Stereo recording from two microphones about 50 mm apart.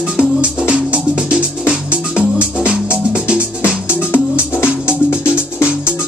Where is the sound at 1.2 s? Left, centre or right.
Right.